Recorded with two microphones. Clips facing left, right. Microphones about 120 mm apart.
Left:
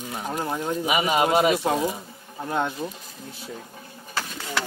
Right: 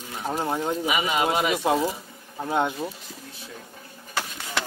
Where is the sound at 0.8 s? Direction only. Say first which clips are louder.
Left 5 dB; 20° left (ahead or behind).